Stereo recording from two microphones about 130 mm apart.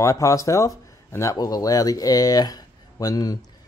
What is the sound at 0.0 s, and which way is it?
Speech, 25° left (ahead or behind).